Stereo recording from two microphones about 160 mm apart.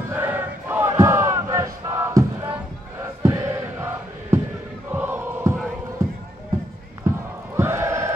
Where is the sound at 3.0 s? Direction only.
15° right (ahead or behind).